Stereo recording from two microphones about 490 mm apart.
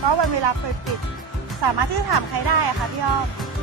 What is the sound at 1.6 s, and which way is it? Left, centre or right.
Speech, right.